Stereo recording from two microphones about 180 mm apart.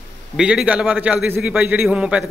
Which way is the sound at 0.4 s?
5° right (ahead or behind).